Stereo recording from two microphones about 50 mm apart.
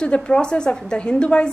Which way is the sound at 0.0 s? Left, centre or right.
Centre.